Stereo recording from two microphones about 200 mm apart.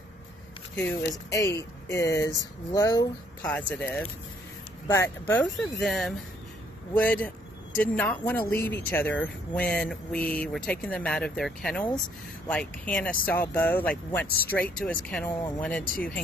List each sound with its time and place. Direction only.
0.7 s speech: 10° left (ahead or behind)
3.4 s speech: 5° left (ahead or behind)
15.9 s speech: 45° left (ahead or behind)